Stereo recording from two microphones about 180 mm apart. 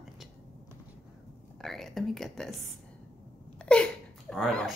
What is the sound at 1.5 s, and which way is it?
A woman's voice, centre (ahead or behind).